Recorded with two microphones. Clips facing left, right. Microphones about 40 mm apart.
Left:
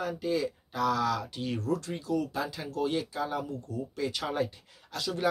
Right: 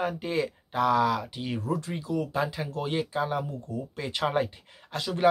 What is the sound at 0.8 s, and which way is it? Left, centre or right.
Speech, right.